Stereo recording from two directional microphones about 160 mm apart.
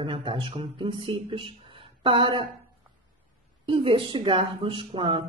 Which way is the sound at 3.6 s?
30° right (ahead or behind).